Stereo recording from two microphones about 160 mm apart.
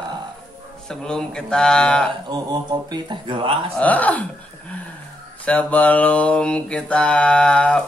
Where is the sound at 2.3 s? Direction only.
25° right (ahead or behind).